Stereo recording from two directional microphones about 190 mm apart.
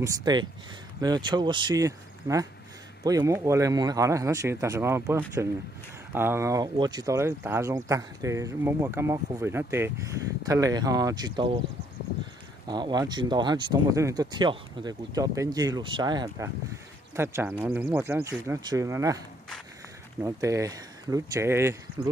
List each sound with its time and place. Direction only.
0.0 s speech: 20° right (ahead or behind)
12.6 s speech: 20° right (ahead or behind)